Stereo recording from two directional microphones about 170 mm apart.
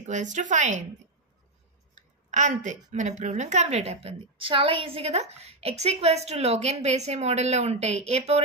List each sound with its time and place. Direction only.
0.0 s a woman's voice: 45° right (ahead or behind)
2.0 s a woman's voice: 45° right (ahead or behind)